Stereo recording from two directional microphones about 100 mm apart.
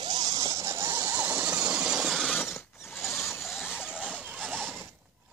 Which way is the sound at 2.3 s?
25° left (ahead or behind).